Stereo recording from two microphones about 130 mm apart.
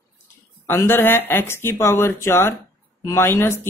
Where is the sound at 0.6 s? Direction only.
15° left (ahead or behind).